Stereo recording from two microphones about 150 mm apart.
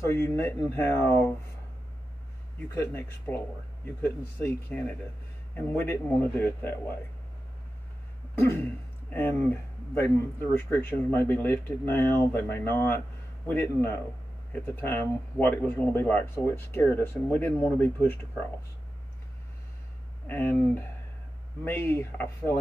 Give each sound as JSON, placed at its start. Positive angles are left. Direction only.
{"t": 0.0, "sound": "speech", "side_deg": 20}
{"t": 2.7, "sound": "speech", "side_deg": 15}
{"t": 8.4, "sound": "speech", "side_deg": 15}
{"t": 20.2, "sound": "speech", "side_deg": 15}